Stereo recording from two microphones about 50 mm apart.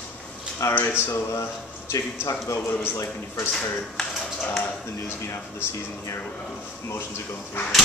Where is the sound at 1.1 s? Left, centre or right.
Left.